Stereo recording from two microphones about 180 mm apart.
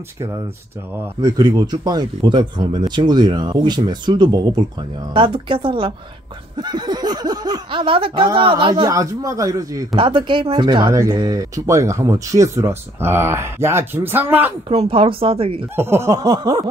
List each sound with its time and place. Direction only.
1.2 s speech: 20° right (ahead or behind)
8.8 s speech: 20° right (ahead or behind)
14.7 s speech: 30° right (ahead or behind)
15.7 s speech: 15° right (ahead or behind)